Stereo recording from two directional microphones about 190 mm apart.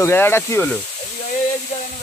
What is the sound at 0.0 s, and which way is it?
Speech, 10° left (ahead or behind).